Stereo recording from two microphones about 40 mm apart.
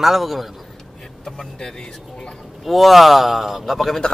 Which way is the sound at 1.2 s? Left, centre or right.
Centre.